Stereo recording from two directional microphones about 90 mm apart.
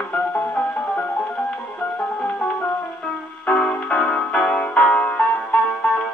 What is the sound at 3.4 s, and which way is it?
Music, 10° left (ahead or behind).